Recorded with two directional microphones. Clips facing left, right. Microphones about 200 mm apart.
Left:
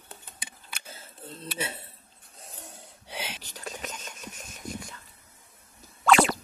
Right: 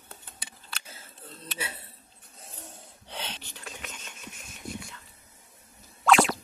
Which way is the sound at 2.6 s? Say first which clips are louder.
Right 1 dB; 10° left (ahead or behind).